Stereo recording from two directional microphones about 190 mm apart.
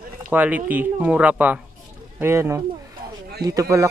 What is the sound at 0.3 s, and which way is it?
Speech, 10° right (ahead or behind).